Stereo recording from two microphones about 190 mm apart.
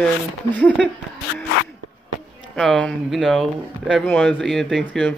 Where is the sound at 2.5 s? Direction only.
5° left (ahead or behind).